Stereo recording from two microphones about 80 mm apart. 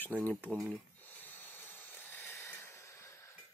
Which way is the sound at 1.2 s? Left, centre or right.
Left.